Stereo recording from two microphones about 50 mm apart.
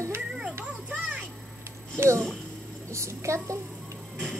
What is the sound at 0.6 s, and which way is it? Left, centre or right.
Children playing, right.